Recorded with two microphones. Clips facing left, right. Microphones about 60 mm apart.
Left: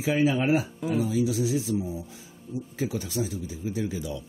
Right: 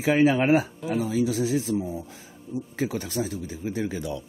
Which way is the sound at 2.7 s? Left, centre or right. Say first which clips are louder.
Right 1 dB; right.